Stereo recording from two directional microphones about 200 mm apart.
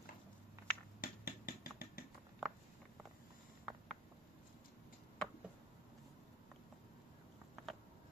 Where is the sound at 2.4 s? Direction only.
Centre (ahead or behind).